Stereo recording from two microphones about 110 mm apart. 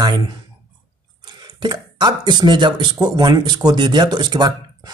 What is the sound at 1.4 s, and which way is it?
Speech, 40° right (ahead or behind).